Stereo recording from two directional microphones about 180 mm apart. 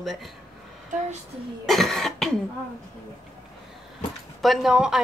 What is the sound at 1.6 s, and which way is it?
Cough, centre (ahead or behind).